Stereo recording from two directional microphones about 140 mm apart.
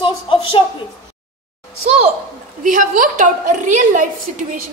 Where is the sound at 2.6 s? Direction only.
70° right (ahead or behind).